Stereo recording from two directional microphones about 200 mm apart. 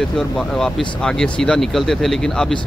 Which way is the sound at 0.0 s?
Centre (ahead or behind).